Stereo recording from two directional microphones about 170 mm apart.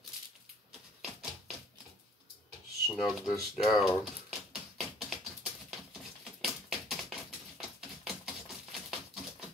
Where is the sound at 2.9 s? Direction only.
Centre (ahead or behind).